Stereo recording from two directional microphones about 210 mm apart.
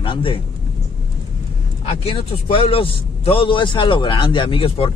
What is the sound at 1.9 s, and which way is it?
Speech, 30° left (ahead or behind).